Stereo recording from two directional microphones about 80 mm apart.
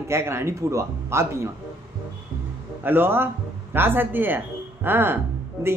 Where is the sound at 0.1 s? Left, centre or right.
Right.